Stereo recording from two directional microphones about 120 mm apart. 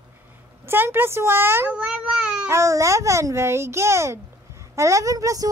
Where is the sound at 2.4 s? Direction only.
25° right (ahead or behind).